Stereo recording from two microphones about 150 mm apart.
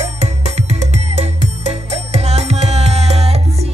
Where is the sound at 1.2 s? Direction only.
45° right (ahead or behind).